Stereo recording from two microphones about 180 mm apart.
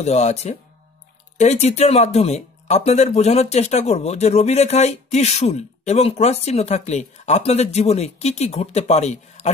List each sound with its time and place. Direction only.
0.0 s speech: 40° left (ahead or behind)